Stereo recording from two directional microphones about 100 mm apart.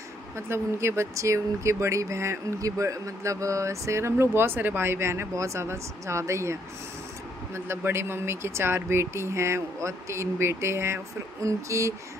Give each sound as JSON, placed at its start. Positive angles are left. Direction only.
{"t": 0.5, "sound": "speech", "side_deg": -25}